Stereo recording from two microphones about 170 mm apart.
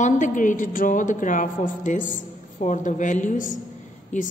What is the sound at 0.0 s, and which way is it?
A woman's voice, 45° left (ahead or behind).